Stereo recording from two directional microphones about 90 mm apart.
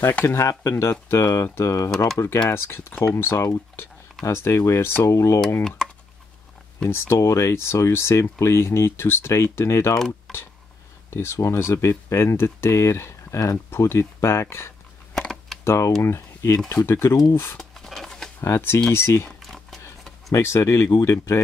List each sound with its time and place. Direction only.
0.1 s speech: 25° left (ahead or behind)
5.6 s speech: 5° left (ahead or behind)
6.9 s speech: 25° left (ahead or behind)
9.9 s speech: 5° left (ahead or behind)
11.1 s speech: 30° left (ahead or behind)
15.1 s typing: 5° left (ahead or behind)
15.6 s speech: 30° left (ahead or behind)
17.6 s a sound: centre (ahead or behind)
18.4 s speech: 25° left (ahead or behind)
19.4 s a sound: 5° left (ahead or behind)
20.2 s speech: 30° left (ahead or behind)